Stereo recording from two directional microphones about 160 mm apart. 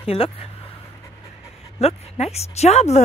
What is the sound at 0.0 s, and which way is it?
Speech, 35° left (ahead or behind).